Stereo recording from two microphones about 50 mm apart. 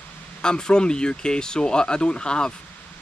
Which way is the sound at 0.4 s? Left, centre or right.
Centre.